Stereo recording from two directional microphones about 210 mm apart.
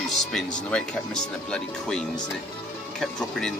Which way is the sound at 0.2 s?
Centre (ahead or behind).